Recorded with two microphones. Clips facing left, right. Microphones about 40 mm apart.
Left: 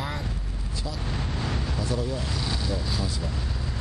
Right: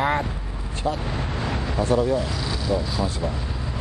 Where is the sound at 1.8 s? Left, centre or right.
Right.